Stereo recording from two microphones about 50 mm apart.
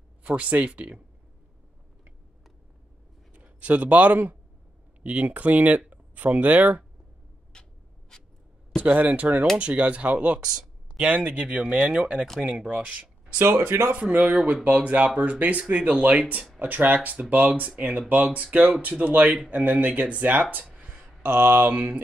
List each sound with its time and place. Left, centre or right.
0.2 s speech: right
3.3 s speech: right
7.5 s a sound: centre
8.8 s speech: right
13.6 s speech: right
13.9 s speech: right
20.7 s a sound: centre
21.2 s a sound: right
21.7 s speech: right